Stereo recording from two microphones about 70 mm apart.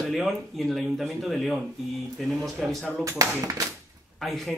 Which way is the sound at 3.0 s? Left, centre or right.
Right.